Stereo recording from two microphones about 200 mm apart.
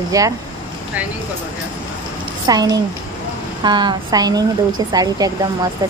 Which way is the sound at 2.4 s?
20° right (ahead or behind).